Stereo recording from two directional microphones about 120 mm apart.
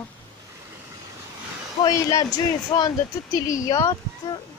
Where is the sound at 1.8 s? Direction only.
30° left (ahead or behind).